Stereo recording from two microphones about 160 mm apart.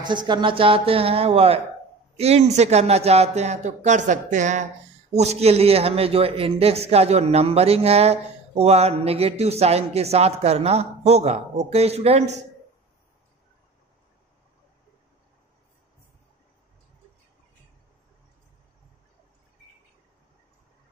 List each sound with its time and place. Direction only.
0.0 s a man's voice: 25° right (ahead or behind)